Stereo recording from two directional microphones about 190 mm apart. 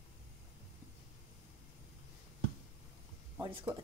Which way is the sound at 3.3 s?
10° right (ahead or behind).